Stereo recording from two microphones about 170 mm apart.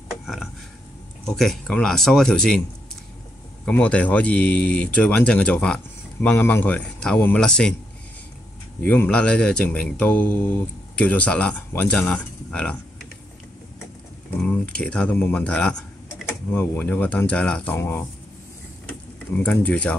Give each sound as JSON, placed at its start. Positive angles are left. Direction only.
{"t": 0.1, "sound": "a sound", "side_deg": 0}
{"t": 1.2, "sound": "speech", "side_deg": 5}
{"t": 3.6, "sound": "speech", "side_deg": 5}
{"t": 8.8, "sound": "speech", "side_deg": 10}
{"t": 14.4, "sound": "speech", "side_deg": 5}
{"t": 19.3, "sound": "speech", "side_deg": 10}